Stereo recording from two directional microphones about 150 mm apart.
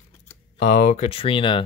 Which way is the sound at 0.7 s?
55° left (ahead or behind).